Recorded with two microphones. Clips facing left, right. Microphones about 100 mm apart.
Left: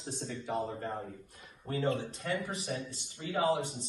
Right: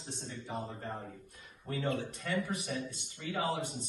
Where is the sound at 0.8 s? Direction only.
40° left (ahead or behind).